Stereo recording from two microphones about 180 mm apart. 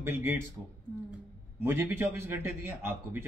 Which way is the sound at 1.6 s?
10° right (ahead or behind).